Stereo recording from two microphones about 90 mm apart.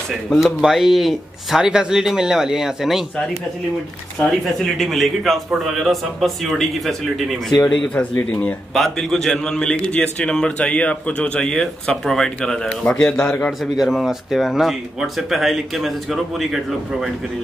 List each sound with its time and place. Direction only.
0.1 s speech: centre (ahead or behind)
4.2 s speech: 5° left (ahead or behind)
7.9 s a man's voice: 15° left (ahead or behind)
8.7 s a man's voice: 5° left (ahead or behind)
13.5 s speech: 5° right (ahead or behind)